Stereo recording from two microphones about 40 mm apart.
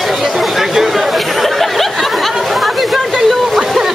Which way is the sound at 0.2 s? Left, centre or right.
Centre.